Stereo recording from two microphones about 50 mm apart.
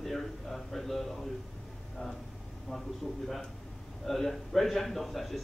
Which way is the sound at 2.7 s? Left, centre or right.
Centre.